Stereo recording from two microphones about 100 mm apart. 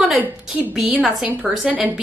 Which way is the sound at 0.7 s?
5° right (ahead or behind).